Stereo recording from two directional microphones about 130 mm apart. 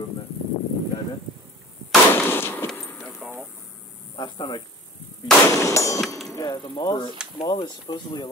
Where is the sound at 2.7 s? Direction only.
5° left (ahead or behind).